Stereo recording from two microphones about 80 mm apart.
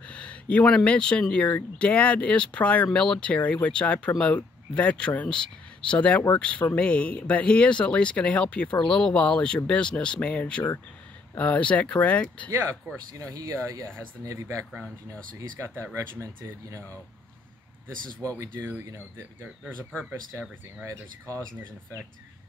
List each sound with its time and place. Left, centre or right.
0.0 s speech: centre
12.4 s speech: right
18.2 s speech: right
18.6 s speech: right
20.1 s speech: right